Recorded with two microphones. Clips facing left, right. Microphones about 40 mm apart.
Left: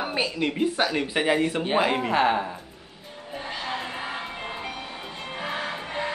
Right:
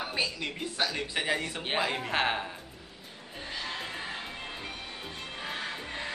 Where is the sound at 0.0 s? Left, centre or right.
Left.